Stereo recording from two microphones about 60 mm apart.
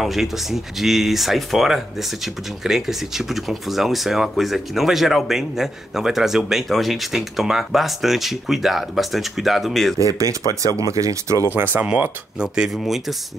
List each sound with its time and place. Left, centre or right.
0.0 s speech: centre
9.9 s speech: right
11.5 s speech: right
12.4 s speech: centre